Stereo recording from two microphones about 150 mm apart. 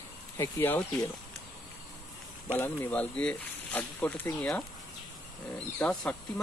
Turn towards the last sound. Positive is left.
turn(degrees=5)  # may be behind; listen again after turning